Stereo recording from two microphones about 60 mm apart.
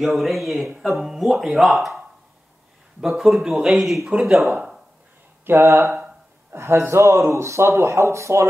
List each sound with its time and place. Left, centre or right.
0.0 s speech: centre
3.0 s speech: centre
5.4 s speech: right
5.7 s speech: right